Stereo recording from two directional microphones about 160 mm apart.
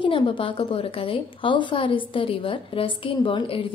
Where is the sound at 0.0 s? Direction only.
30° left (ahead or behind).